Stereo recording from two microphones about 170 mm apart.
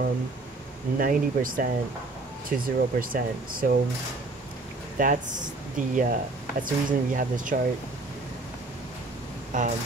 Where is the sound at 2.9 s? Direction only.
55° right (ahead or behind).